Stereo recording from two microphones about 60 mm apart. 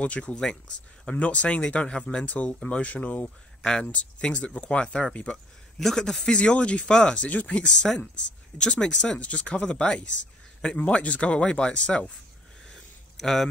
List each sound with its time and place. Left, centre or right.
0.0 s speech: left
13.2 s speech: centre